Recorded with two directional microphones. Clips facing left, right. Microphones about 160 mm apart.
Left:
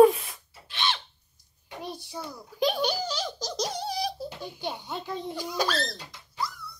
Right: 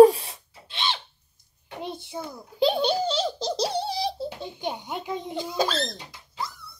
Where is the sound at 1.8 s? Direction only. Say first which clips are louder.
Right 3 dB; 25° right (ahead or behind).